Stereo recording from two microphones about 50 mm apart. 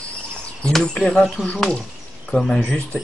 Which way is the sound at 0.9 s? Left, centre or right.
Centre.